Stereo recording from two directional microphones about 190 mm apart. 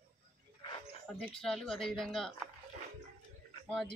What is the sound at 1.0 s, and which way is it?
Speech, 5° left (ahead or behind).